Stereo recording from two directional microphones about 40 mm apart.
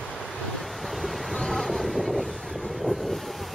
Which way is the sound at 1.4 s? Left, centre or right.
Centre.